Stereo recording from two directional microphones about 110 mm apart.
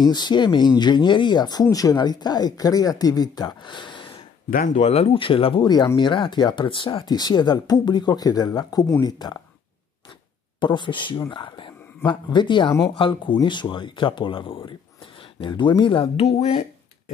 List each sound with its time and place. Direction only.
0.1 s speech: 40° left (ahead or behind)
4.7 s speech: 80° left; by 9.4 s 40° left (ahead or behind)
10.6 s speech: 45° left (ahead or behind); by 16.6 s 70° left (ahead or behind)